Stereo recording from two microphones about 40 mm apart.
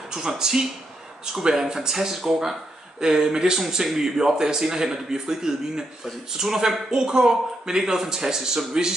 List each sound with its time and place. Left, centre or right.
0.1 s a man's voice: centre